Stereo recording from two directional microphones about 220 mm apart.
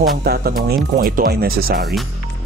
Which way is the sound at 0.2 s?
45° right (ahead or behind).